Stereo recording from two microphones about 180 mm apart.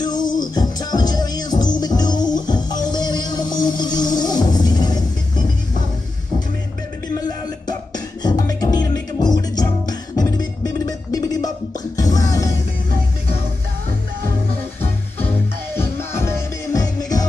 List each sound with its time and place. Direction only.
0.0 s music: 25° left (ahead or behind)
7.2 s music: 20° left (ahead or behind)
15.7 s music: 15° left (ahead or behind)